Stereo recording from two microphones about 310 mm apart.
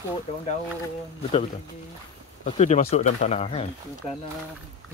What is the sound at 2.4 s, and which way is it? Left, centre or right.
Speech, left.